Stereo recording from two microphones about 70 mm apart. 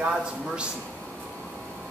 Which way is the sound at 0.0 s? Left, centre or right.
Centre.